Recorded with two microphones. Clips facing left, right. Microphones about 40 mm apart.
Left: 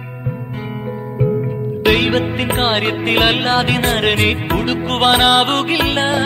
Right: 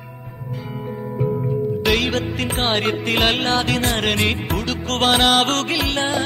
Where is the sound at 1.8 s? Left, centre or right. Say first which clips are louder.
Left 8 dB; left.